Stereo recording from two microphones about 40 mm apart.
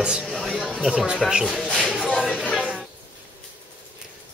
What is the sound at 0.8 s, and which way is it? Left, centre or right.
Speech, centre.